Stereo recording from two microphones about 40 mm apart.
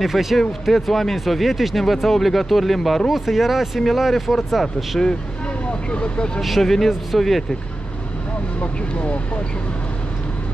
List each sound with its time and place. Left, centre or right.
0.0 s speech: centre
5.7 s speech: left
6.6 s speech: centre
8.5 s speech: left